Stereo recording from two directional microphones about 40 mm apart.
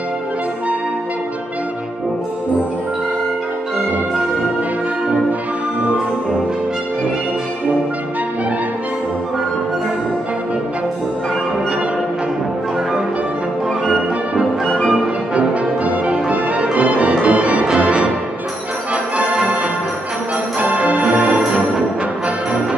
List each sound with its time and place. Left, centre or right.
15.3 s brass instrument: right
16.7 s music: right
20.5 s music: right